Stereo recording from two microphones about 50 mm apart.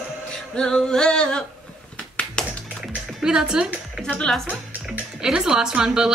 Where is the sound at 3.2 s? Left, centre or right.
Centre.